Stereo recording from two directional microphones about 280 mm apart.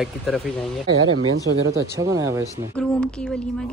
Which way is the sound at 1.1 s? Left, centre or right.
Right.